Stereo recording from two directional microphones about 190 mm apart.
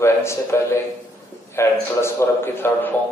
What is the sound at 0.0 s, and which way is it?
A man's voice, 15° left (ahead or behind).